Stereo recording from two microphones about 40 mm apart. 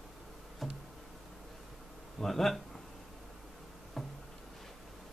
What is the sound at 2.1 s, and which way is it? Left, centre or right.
Speech, centre.